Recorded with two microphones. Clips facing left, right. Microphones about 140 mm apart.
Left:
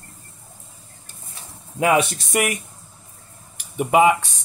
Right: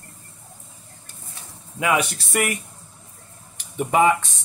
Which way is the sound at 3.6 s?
10° left (ahead or behind).